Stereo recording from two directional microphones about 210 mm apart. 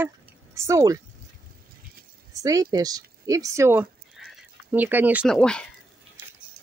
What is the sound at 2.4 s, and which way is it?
Speech, 15° right (ahead or behind).